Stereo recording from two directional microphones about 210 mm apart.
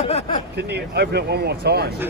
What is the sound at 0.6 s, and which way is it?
Speech, 50° right (ahead or behind).